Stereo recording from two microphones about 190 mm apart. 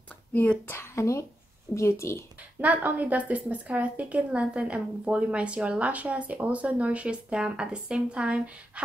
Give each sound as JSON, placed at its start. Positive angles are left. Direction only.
{"t": 0.3, "sound": "a woman's voice", "side_deg": 10}
{"t": 2.6, "sound": "a woman's voice", "side_deg": -10}